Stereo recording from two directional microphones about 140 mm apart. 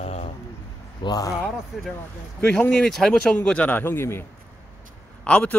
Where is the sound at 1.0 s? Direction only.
25° left (ahead or behind).